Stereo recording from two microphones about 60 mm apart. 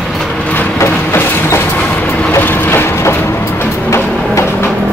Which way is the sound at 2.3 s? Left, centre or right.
Left.